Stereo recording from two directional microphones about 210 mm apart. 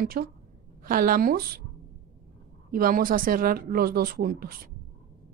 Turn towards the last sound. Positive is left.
turn(degrees=-45)  # may be behind; listen again after turning